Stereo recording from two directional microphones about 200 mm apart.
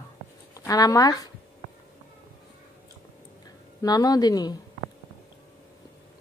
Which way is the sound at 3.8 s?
20° left (ahead or behind).